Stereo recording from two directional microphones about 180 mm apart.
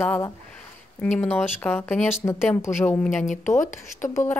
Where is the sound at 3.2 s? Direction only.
45° left (ahead or behind).